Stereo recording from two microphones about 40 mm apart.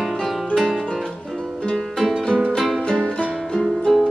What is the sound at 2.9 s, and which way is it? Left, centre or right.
Music, centre.